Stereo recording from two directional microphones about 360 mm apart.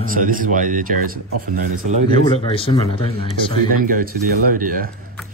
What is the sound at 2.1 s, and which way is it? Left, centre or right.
A man's voice, centre.